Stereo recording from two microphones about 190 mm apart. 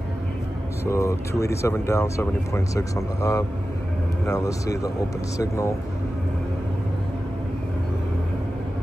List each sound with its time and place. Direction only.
0.8 s speech: 15° left (ahead or behind)